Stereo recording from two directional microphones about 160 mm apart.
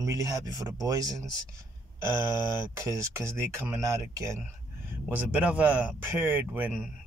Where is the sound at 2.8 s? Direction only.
20° right (ahead or behind).